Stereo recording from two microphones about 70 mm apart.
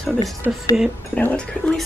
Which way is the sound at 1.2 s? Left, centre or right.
Centre.